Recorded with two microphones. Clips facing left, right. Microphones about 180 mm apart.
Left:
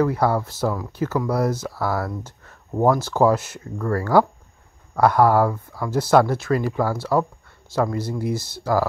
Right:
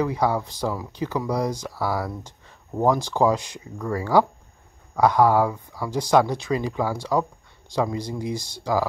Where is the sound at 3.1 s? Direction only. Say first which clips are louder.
Left 3 dB; 15° right (ahead or behind).